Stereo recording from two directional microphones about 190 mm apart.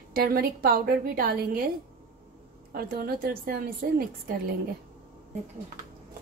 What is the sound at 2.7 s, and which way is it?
A woman's voice, 50° right (ahead or behind).